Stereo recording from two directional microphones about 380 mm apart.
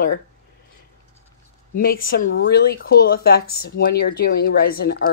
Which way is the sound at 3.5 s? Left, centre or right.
Left.